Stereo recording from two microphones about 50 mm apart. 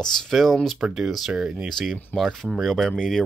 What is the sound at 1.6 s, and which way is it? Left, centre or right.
Speech, centre.